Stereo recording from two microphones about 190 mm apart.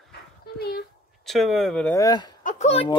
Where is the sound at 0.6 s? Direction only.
55° left (ahead or behind).